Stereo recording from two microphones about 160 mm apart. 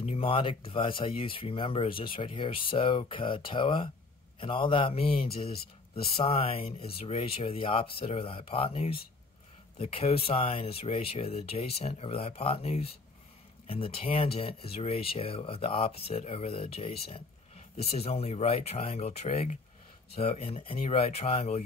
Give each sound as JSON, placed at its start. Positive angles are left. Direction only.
{"t": 0.0, "sound": "speech", "side_deg": 40}